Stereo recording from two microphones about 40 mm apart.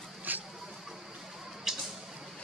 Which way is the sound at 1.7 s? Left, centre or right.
Centre.